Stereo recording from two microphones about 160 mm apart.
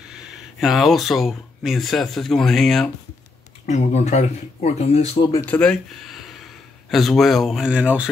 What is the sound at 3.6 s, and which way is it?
Speech, 45° left (ahead or behind).